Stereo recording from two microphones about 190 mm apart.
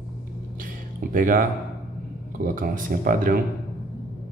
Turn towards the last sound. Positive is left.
turn(degrees=-45)  # may be behind; listen again after turning